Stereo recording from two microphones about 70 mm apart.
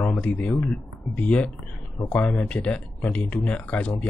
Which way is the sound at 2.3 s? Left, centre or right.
Centre.